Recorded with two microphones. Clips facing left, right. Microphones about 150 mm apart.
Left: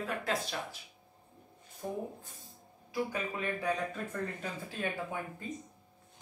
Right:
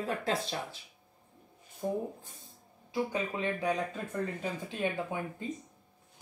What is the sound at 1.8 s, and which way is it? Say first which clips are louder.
Speech: right 5 dB; 10° right (ahead or behind).